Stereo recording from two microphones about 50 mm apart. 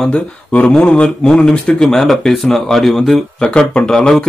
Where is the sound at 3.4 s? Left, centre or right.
Left.